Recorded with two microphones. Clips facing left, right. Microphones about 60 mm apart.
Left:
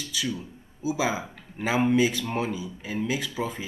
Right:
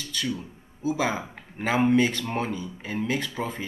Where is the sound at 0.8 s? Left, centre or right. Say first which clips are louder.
Right 1 dB; centre.